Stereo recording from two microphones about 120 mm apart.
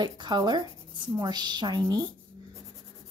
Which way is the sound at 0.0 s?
35° right (ahead or behind).